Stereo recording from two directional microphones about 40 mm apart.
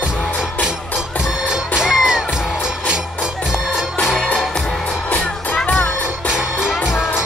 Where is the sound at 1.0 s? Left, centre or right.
Centre.